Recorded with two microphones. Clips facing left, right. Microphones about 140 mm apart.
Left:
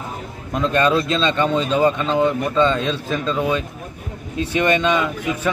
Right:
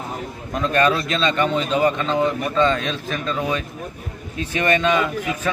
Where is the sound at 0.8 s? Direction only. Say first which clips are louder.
Left 2 dB; 25° left (ahead or behind).